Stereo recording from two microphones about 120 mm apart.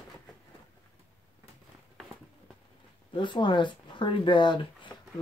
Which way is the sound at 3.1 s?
40° left (ahead or behind).